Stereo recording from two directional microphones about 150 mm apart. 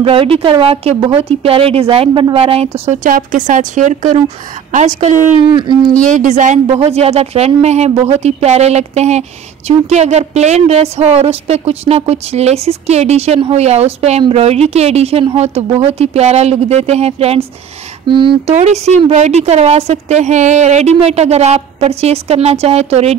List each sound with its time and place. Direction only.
0.0 s a woman's voice: 40° right (ahead or behind)
3.0 s speech: 65° right (ahead or behind)
5.5 s a woman's voice: 30° right (ahead or behind)
5.9 s speech: 60° right (ahead or behind)
6.8 s a woman's voice: 45° right (ahead or behind)
18.6 s a woman's voice: 45° right (ahead or behind)